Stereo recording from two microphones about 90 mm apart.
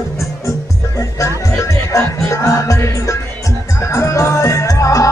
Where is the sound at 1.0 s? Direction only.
35° left (ahead or behind).